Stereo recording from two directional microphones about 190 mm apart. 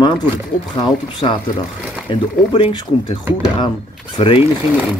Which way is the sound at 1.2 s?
30° left (ahead or behind).